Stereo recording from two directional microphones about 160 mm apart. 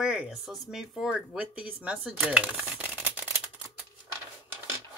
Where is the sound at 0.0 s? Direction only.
5° right (ahead or behind).